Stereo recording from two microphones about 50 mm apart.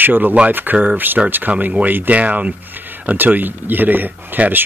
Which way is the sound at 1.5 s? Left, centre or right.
Right.